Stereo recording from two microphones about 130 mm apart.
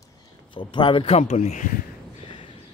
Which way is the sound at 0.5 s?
35° left (ahead or behind).